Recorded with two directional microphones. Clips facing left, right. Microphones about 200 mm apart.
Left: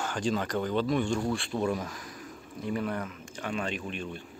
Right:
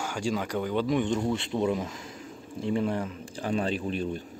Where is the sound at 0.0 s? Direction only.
10° right (ahead or behind); by 4.2 s 35° right (ahead or behind).